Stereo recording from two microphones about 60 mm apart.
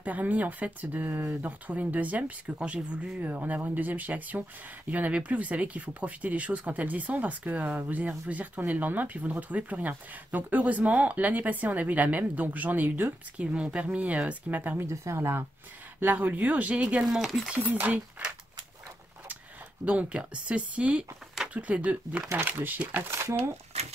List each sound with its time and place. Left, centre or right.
0.0 s speech: right
13.4 s speech: centre
14.9 s speech: right
16.0 s speech: right
17.0 s speech: centre
17.6 s speech: right
19.8 s speech: right
22.4 s speech: right
23.0 s speech: right